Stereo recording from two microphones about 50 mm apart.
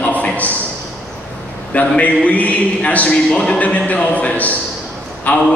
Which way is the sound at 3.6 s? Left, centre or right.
Left.